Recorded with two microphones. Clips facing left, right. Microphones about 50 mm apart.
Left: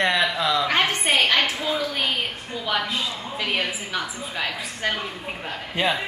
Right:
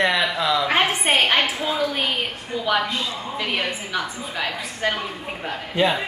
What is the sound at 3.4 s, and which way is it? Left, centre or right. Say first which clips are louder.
Speech: left 1 dB; centre.